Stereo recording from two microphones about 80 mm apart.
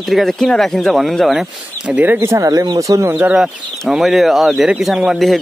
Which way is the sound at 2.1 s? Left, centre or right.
Right.